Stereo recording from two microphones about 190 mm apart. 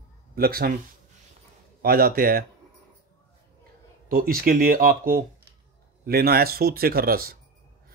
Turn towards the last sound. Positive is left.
turn(degrees=-50)  # may be behind; listen again after turning